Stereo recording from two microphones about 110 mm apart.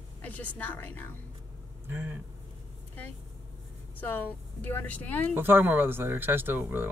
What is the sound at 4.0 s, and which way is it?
Speech, 15° left (ahead or behind).